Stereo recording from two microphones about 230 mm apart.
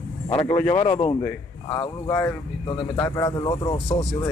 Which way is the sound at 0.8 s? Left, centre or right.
Left.